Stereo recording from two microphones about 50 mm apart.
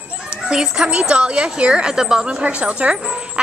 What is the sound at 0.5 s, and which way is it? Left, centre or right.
Speech, centre.